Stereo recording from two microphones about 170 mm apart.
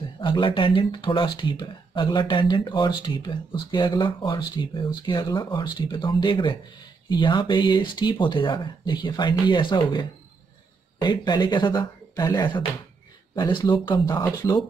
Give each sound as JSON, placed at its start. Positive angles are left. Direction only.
{"t": 0.2, "sound": "speech", "side_deg": 30}